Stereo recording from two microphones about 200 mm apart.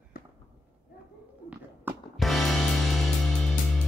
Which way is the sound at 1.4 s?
5° right (ahead or behind).